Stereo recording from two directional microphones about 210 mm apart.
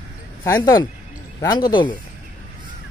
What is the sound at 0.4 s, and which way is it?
Speech, 15° left (ahead or behind).